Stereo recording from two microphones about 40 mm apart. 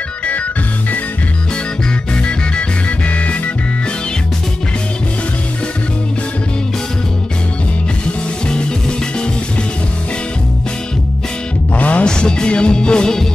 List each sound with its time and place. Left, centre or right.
3.1 s music: left
8.5 s music: left
11.7 s music: left
12.1 s music: left